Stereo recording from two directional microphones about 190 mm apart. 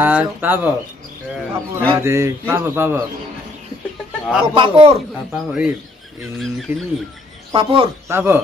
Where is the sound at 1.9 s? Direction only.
15° right (ahead or behind).